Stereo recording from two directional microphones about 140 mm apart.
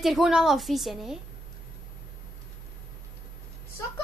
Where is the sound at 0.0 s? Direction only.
Centre (ahead or behind).